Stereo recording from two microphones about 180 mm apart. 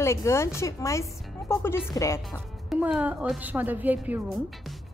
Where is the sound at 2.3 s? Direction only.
5° right (ahead or behind).